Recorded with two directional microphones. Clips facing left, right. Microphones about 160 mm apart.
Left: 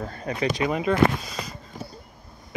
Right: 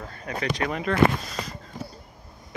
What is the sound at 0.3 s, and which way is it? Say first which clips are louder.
Speech: left 1 dB; 30° left (ahead or behind).